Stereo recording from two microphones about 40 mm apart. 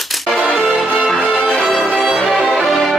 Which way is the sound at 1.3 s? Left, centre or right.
Centre.